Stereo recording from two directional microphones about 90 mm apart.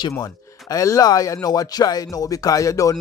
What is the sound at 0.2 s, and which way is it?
Speech, 40° left (ahead or behind).